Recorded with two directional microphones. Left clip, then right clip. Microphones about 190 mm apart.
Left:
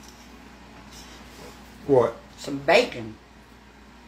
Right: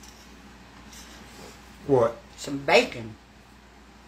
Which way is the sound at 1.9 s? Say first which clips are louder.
Left 2 dB; 25° right (ahead or behind).